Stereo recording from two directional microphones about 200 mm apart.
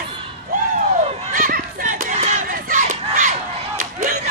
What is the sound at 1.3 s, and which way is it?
Crowd, 45° right (ahead or behind).